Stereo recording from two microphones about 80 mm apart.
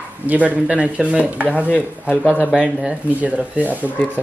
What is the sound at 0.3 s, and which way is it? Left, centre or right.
Speech, centre.